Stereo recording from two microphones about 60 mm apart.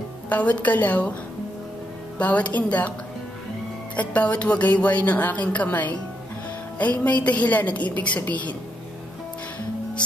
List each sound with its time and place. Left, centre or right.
0.3 s speech: left
2.1 s speech: left
3.9 s speech: left